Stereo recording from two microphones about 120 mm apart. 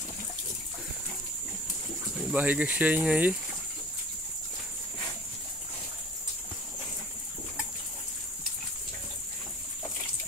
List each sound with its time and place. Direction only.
2.3 s speech: 15° right (ahead or behind)